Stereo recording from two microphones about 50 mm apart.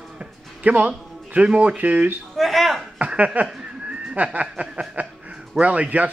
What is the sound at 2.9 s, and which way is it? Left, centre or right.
Speech, right.